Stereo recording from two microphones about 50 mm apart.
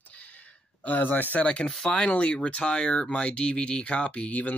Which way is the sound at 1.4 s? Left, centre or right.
Centre.